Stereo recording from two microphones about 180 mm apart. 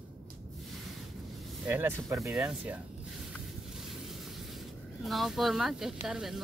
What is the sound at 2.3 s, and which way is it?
Speech, 5° right (ahead or behind).